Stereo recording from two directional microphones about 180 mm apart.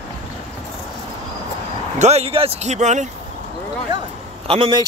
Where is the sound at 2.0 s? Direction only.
35° right (ahead or behind).